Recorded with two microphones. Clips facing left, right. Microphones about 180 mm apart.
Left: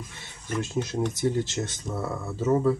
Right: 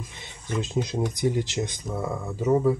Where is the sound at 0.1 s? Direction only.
20° right (ahead or behind).